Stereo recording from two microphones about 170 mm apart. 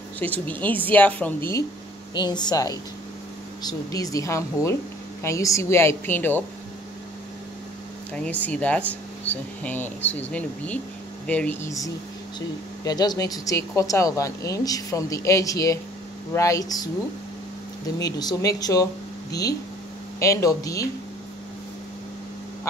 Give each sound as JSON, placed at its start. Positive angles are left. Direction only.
{"t": 0.2, "sound": "speech", "side_deg": 10}
{"t": 2.1, "sound": "speech", "side_deg": 25}
{"t": 8.1, "sound": "speech", "side_deg": 10}
{"t": 12.4, "sound": "speech", "side_deg": 25}
{"t": 17.9, "sound": "speech", "side_deg": 20}
{"t": 20.2, "sound": "speech", "side_deg": 20}